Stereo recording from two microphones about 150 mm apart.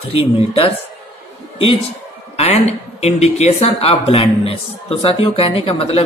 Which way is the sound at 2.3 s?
45° left (ahead or behind).